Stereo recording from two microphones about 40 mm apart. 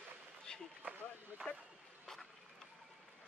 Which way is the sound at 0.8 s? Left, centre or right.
Right.